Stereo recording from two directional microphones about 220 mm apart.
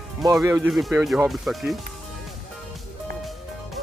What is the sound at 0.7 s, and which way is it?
Speech, centre (ahead or behind).